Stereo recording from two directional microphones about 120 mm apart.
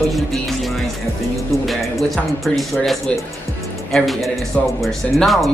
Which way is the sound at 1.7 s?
Centre (ahead or behind).